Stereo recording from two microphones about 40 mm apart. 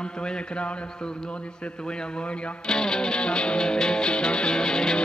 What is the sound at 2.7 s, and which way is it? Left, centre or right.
Music, centre.